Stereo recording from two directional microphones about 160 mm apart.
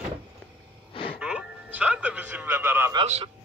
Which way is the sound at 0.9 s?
35° left (ahead or behind).